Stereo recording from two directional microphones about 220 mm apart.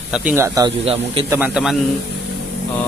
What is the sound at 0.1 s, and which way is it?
Speech, 10° right (ahead or behind).